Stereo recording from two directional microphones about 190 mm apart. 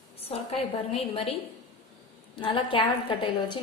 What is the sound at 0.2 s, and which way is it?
A woman's voice, 30° left (ahead or behind).